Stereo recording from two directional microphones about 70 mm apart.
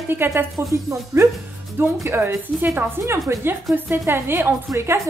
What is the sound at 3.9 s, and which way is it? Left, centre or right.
A woman's voice, right.